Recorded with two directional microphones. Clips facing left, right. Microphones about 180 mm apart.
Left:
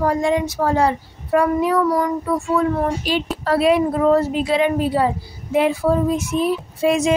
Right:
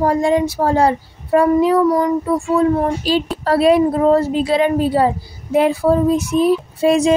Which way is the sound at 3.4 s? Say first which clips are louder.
Right 3 dB; 35° right (ahead or behind).